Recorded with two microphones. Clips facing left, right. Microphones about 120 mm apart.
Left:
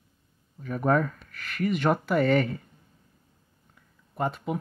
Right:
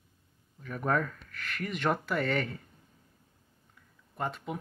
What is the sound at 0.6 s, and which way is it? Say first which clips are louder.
Speech: left 6 dB; 20° left (ahead or behind).